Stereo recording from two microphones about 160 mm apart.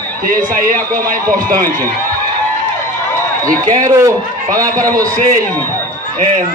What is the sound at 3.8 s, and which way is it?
Speech, 20° right (ahead or behind).